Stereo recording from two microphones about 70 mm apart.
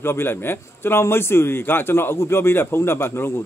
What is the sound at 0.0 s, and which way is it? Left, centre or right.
A man's voice, left.